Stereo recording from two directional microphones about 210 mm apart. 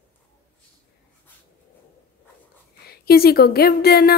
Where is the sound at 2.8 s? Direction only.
45° left (ahead or behind).